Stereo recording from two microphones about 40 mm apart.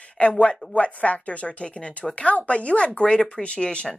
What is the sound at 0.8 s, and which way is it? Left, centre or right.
Speech, left.